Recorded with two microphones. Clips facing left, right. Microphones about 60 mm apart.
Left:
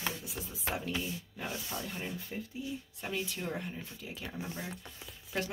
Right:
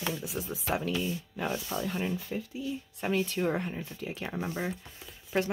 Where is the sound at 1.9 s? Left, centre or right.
Right.